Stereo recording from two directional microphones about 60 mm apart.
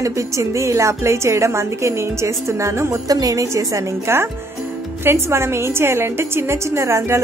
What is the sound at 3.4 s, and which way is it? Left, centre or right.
A woman's voice, right.